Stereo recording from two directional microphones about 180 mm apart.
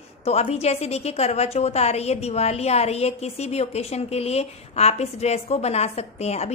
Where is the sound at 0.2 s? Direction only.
35° left (ahead or behind).